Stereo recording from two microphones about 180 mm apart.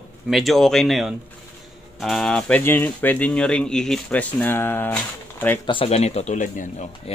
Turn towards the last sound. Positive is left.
turn(degrees=40)  # may be behind; listen again after turning